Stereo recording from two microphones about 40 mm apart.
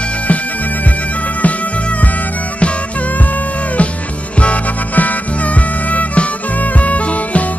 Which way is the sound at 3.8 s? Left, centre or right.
Left.